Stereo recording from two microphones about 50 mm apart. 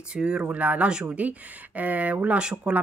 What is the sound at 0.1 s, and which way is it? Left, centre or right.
Speech, centre.